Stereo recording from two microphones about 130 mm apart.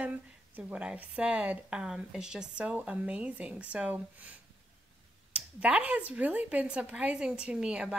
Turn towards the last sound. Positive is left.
turn(degrees=-5)  # may be behind; listen again after turning